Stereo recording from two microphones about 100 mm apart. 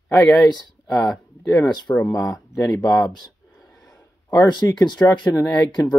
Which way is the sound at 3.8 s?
40° left (ahead or behind).